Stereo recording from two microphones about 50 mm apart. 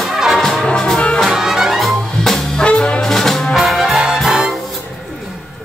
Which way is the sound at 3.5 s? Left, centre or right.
Centre.